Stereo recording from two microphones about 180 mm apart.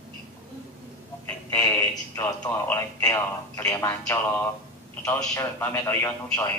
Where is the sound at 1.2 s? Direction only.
10° left (ahead or behind).